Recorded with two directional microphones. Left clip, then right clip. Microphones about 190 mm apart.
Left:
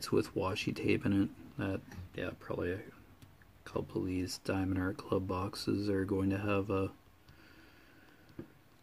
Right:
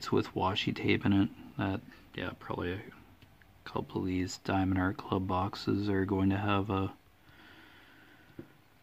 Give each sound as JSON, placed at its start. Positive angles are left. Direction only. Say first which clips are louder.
{"t": 0.0, "sound": "speech", "louder": "right 2 dB", "side_deg": -25}